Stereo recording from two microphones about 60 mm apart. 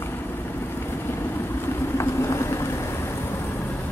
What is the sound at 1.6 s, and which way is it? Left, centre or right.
Vehicle, left.